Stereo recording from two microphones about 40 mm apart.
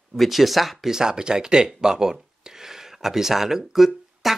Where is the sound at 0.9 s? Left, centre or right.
Centre.